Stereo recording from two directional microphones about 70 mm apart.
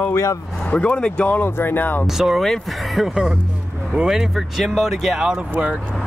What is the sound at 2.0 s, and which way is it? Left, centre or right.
Speech, centre.